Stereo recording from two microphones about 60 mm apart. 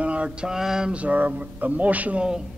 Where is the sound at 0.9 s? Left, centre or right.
Right.